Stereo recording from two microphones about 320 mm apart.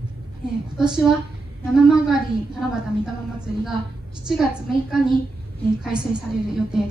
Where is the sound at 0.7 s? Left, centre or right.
Centre.